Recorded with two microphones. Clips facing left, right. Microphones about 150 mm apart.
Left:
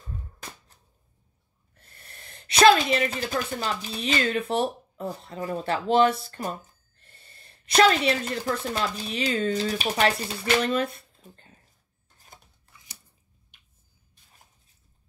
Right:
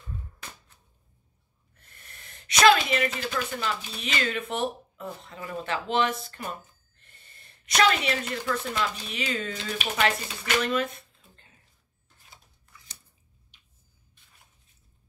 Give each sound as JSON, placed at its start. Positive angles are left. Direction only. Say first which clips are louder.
{"t": 1.8, "sound": "a woman's voice", "louder": "left 2 dB", "side_deg": 35}
{"t": 12.3, "sound": "scissors", "louder": "left 4 dB", "side_deg": 50}